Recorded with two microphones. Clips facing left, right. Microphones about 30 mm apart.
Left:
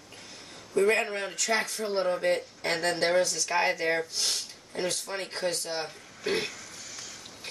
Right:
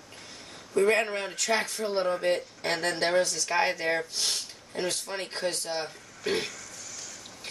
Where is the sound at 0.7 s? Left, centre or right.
Centre.